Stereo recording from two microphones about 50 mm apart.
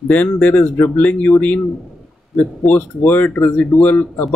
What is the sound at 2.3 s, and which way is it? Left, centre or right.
Speech, left.